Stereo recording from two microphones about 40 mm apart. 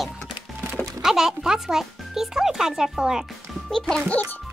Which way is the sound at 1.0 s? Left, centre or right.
Centre.